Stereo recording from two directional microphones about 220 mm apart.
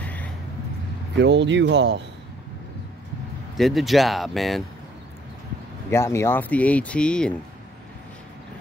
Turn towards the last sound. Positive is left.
turn(degrees=5)  # may be behind; listen again after turning